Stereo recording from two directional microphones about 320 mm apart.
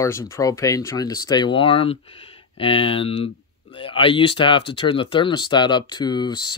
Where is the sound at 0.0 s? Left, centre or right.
Centre.